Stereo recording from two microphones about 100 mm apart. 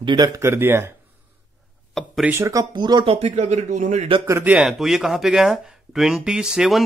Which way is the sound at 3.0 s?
80° right.